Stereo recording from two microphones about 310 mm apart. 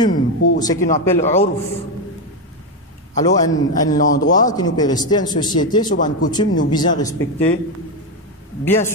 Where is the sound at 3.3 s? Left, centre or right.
Centre.